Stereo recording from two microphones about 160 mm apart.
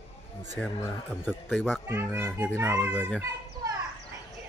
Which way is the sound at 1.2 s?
Centre (ahead or behind).